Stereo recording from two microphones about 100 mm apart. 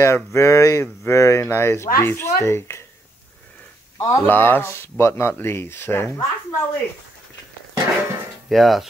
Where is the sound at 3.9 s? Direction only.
35° left (ahead or behind).